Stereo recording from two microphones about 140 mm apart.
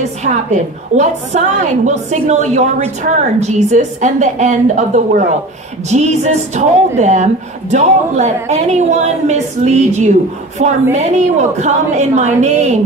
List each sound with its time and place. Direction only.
0.9 s a woman's voice: 60° right (ahead or behind)